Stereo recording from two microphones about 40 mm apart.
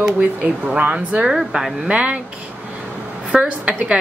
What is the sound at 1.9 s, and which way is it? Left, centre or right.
Speech, right.